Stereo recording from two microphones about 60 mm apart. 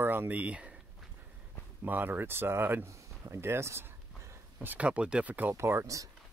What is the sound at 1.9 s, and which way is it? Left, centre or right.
Speech, right.